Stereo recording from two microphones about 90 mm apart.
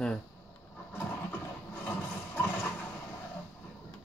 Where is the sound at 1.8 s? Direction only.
20° left (ahead or behind).